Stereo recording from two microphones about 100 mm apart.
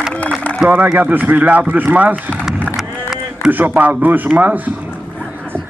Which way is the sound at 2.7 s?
5° right (ahead or behind).